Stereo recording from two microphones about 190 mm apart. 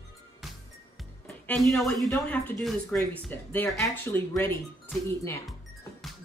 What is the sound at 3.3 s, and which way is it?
Speech, 10° left (ahead or behind).